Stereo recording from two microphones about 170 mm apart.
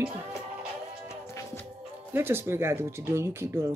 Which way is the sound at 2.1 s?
15° right (ahead or behind).